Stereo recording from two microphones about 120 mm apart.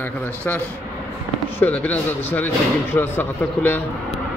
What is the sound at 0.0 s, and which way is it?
Speech, 15° left (ahead or behind).